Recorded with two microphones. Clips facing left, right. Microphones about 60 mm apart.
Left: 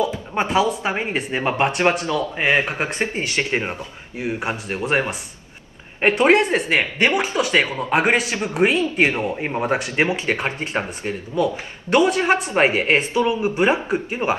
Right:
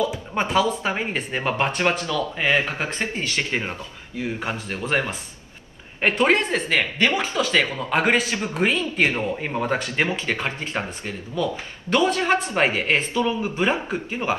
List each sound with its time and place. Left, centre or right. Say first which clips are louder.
0.3 s speech: left 2 dB; centre